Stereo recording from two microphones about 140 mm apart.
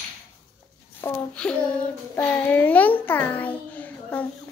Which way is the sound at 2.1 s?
10° left (ahead or behind).